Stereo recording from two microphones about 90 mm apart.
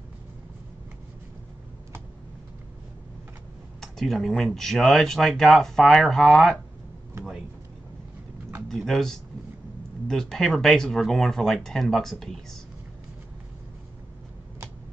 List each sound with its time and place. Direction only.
3.8 s speech: 5° left (ahead or behind)
7.2 s a sound: 30° right (ahead or behind)
8.6 s speech: 5° left (ahead or behind)